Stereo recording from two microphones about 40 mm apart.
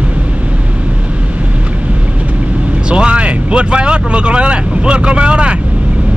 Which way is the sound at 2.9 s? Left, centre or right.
Right.